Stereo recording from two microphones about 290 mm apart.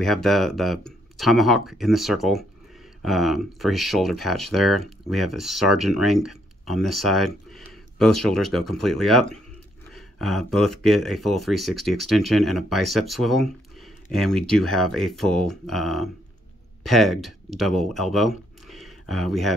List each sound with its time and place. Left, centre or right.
0.0 s speech: centre